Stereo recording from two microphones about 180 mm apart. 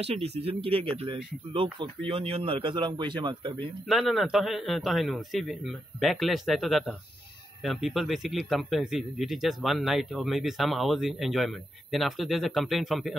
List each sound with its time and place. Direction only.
0.0 s speech: 35° right (ahead or behind)
3.8 s a man's voice: centre (ahead or behind)